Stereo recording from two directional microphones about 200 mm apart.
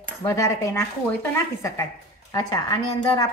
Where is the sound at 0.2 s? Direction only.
15° left (ahead or behind).